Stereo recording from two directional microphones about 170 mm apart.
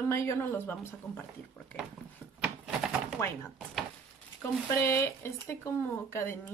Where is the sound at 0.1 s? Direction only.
15° left (ahead or behind).